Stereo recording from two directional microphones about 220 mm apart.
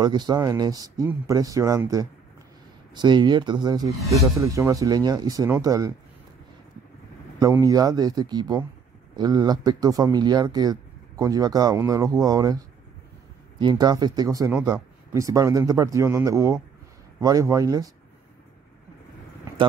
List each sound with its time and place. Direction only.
0.0 s speech: 20° right (ahead or behind)
7.3 s speech: 15° right (ahead or behind)
19.6 s speech: 20° right (ahead or behind)